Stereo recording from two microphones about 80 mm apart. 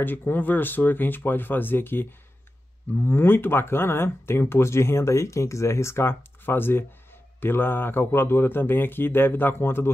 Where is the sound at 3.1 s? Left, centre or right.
Left.